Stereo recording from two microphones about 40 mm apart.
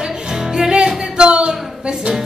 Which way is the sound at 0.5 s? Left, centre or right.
Centre.